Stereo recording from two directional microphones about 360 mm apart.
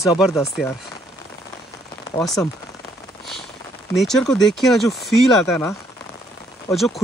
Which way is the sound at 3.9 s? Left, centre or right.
Centre.